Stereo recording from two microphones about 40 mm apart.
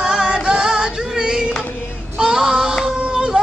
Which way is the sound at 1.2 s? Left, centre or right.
Centre.